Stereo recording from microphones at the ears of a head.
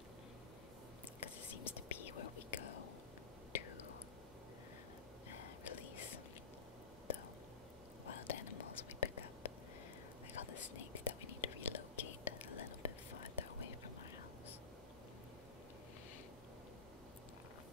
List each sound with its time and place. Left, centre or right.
1.2 s whispering: left
5.3 s whispering: left
8.0 s whispering: left